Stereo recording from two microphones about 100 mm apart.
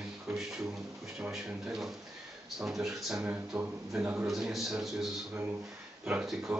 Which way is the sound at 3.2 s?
20° right (ahead or behind).